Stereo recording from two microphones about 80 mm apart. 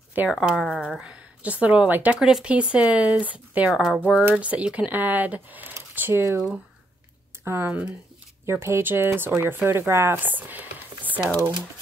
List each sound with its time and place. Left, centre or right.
0.3 s speech: centre
2.1 s speech: centre
4.0 s speech: right
6.2 s speech: right
7.4 s speech: right